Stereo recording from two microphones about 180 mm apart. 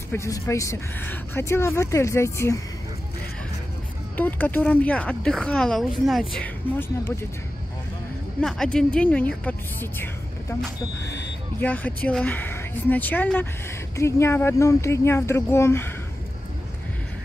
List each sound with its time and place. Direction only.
0.1 s speech: 15° left (ahead or behind)
4.2 s speech: 10° left (ahead or behind)
6.8 s speech: 15° left (ahead or behind)
8.4 s speech: 5° left (ahead or behind)
11.6 s speech: 10° left (ahead or behind)